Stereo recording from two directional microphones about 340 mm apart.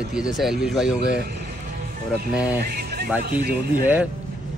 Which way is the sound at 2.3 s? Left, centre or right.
Centre.